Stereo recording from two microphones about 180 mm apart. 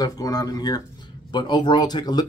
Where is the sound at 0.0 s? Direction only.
20° left (ahead or behind).